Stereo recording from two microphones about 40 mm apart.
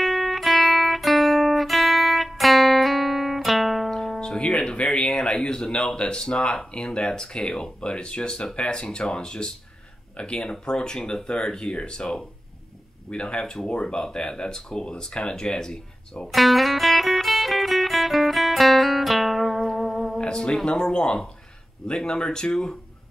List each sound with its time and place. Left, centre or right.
0.0 s music: centre
4.2 s speech: centre
16.3 s music: centre
20.2 s music: left
20.6 s speech: left